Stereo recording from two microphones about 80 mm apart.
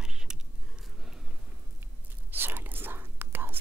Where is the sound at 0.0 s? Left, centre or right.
Centre.